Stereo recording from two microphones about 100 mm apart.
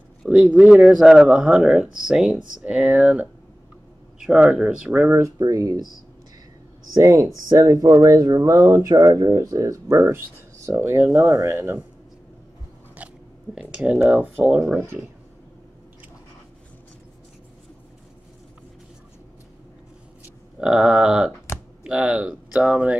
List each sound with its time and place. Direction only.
0.2 s speech: 10° right (ahead or behind)
5.1 s speech: 35° right (ahead or behind)
6.9 s speech: 35° right (ahead or behind)
13.6 s speech: 10° right (ahead or behind)
20.5 s a sound: 5° right (ahead or behind)
21.5 s a sound: 25° left (ahead or behind)
21.8 s speech: 10° right (ahead or behind)